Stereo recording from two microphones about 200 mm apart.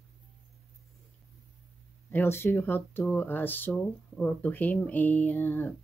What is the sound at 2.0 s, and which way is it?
Speech, 10° left (ahead or behind).